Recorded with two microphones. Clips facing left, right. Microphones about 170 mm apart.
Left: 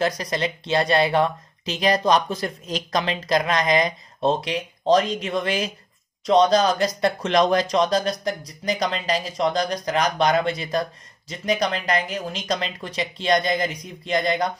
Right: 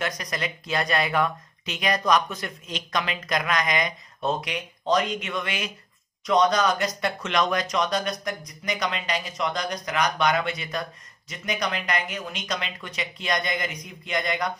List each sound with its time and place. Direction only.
0.0 s speech: 30° left (ahead or behind)